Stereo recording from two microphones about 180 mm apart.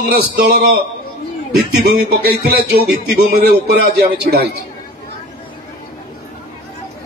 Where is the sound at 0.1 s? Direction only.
55° right (ahead or behind).